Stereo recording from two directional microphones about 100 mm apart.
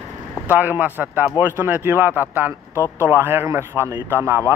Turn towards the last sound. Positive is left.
turn(degrees=-25)  # may be behind; listen again after turning